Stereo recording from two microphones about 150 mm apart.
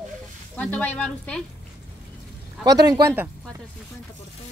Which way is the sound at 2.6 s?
25° right (ahead or behind).